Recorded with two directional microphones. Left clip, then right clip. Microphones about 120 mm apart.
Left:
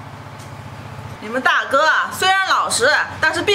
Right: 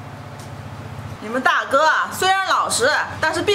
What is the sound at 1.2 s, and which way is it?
A woman's voice, centre (ahead or behind).